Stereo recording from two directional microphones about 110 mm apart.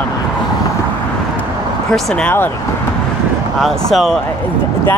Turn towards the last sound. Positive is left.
turn(degrees=0)  # may be behind; listen again after turning